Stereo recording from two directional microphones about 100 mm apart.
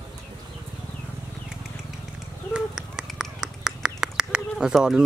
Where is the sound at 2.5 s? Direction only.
5° right (ahead or behind).